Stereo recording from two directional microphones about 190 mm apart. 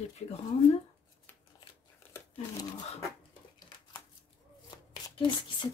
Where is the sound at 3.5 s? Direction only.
25° left (ahead or behind).